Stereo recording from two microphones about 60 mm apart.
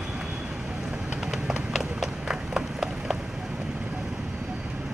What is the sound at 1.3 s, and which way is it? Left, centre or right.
Run, centre.